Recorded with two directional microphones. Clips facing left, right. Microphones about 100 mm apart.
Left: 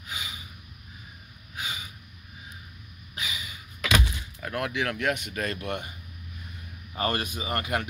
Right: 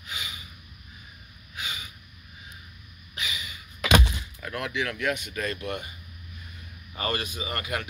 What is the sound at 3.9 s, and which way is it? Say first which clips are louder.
Door: right 4 dB; 25° right (ahead or behind).